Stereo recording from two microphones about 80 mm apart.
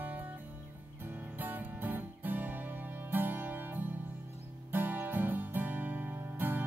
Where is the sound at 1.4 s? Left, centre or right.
Right.